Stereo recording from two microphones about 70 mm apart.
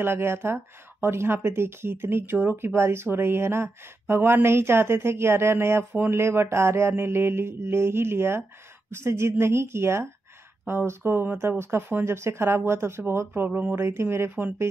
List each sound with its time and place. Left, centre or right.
0.0 s speech: right
13.5 s speech: right
13.7 s speech: right